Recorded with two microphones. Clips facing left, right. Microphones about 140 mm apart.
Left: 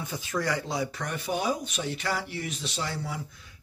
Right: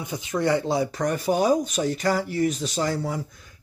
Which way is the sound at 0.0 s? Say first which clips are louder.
Right 6 dB; 15° right (ahead or behind).